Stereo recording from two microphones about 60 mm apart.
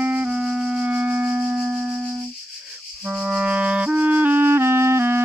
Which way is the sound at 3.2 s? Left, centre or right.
Right.